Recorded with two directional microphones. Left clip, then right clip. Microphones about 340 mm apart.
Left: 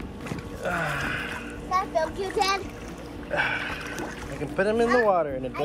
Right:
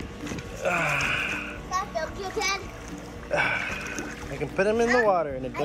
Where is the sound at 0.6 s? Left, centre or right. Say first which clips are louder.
Right 3 dB; centre.